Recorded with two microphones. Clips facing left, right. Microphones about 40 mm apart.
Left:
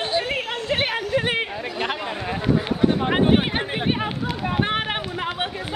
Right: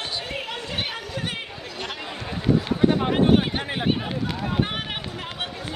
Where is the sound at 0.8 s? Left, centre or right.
Left.